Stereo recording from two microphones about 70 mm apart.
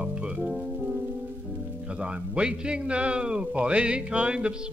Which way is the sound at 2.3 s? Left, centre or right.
Centre.